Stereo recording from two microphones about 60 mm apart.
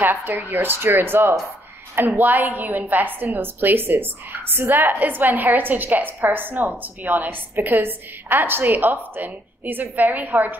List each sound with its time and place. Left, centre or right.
0.0 s a woman's voice: right